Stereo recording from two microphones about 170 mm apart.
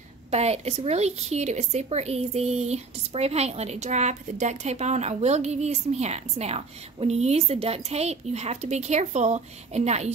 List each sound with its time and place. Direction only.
0.3 s speech: 40° right (ahead or behind)